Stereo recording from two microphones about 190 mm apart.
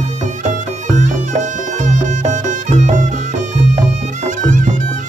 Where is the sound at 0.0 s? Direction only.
40° right (ahead or behind).